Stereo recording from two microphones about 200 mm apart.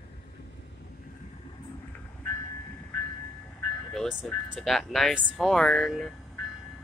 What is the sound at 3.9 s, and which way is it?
Speech, centre (ahead or behind).